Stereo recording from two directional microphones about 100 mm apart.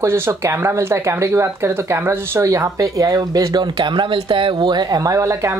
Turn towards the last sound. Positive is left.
turn(degrees=-30)  # may be behind; listen again after turning